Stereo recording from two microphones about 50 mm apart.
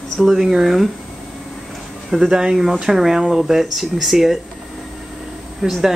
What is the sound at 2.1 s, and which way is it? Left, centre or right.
Speech, centre.